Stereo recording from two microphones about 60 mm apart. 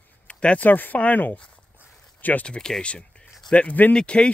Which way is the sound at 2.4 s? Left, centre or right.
Centre.